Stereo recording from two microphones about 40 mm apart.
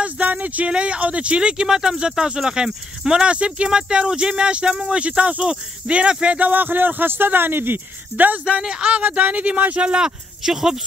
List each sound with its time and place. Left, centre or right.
0.0 s speech: right
6.5 s speech: right
8.5 s speech: centre
8.9 s speech: right
10.0 s speech: centre